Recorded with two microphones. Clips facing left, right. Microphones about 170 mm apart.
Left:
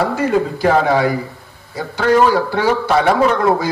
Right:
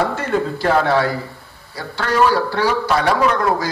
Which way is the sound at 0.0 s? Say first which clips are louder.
Left 3 dB; 10° left (ahead or behind).